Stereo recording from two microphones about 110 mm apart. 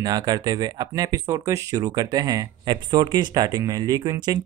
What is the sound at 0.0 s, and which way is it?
Speech, 35° right (ahead or behind).